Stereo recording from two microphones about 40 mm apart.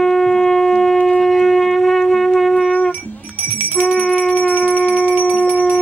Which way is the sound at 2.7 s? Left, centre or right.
Left.